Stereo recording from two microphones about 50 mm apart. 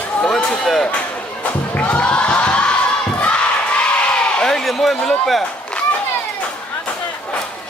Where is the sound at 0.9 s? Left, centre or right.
Left.